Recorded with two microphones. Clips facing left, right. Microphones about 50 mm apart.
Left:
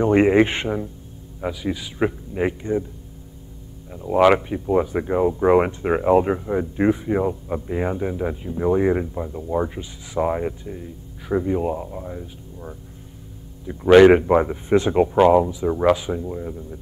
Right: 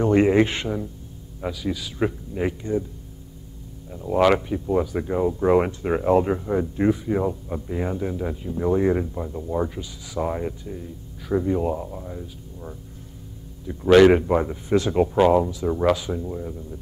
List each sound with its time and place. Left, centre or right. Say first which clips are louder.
0.0 s speech: left 2 dB; left
3.9 s speech: left 3 dB; centre
6.8 s speech: left 3 dB; left
9.8 s speech: left 4 dB; left
15.1 s speech: left 3 dB; centre